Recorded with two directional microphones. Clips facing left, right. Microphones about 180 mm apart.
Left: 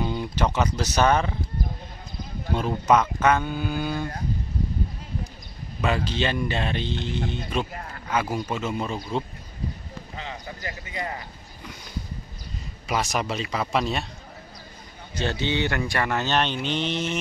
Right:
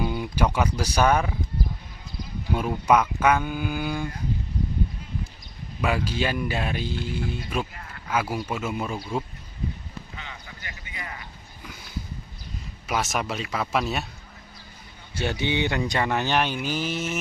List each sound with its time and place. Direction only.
0.0 s speech: 10° right (ahead or behind)
2.5 s speech: 10° right (ahead or behind)
5.8 s speech: 10° right (ahead or behind)
7.7 s a sound: 45° left (ahead or behind)
8.1 s speech: 5° right (ahead or behind)
10.1 s a sound: 35° left (ahead or behind)
12.8 s speech: centre (ahead or behind)
15.1 s speech: 15° right (ahead or behind)